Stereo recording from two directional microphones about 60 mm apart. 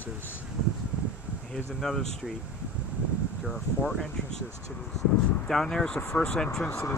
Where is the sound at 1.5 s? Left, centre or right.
Centre.